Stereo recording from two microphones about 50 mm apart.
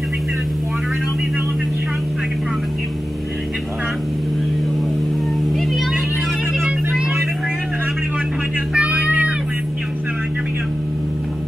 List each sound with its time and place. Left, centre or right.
8.7 s music: right